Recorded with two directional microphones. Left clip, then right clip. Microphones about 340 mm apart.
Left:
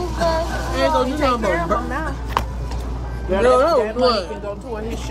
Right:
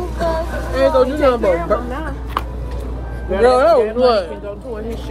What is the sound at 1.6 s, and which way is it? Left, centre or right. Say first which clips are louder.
Music: right 2 dB; left.